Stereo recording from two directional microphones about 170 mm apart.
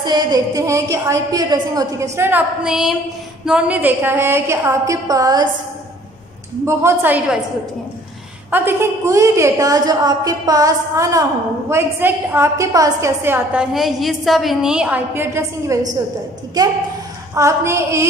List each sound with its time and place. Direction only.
0.0 s a woman's voice: 25° right (ahead or behind)
6.6 s a woman's voice: 15° right (ahead or behind)
8.5 s a woman's voice: 10° right (ahead or behind)
17.3 s a woman's voice: 15° right (ahead or behind)